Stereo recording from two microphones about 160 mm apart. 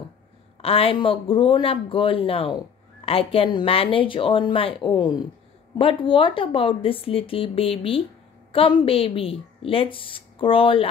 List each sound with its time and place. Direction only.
0.6 s a woman's voice: 35° left (ahead or behind)